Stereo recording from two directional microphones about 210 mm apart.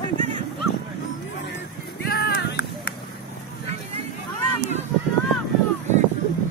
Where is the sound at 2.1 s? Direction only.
45° left (ahead or behind).